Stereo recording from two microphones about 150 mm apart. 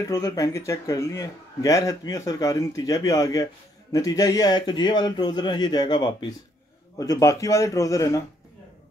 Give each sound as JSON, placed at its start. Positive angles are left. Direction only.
{"t": 0.0, "sound": "a man's voice", "side_deg": 25}